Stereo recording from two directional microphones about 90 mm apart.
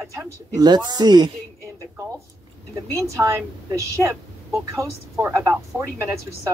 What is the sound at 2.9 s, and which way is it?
Speech, 35° right (ahead or behind).